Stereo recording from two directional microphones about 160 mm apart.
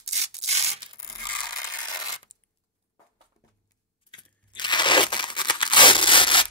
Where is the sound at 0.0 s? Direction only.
40° right (ahead or behind).